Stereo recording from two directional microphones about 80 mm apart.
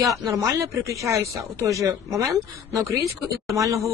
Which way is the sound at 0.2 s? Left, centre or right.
Right.